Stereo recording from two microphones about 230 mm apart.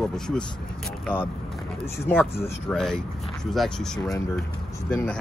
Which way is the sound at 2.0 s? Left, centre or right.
Centre.